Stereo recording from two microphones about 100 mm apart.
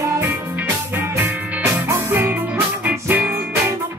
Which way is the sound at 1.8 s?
25° right (ahead or behind).